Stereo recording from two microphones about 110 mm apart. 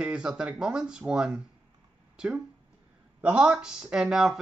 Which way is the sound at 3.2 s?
10° right (ahead or behind).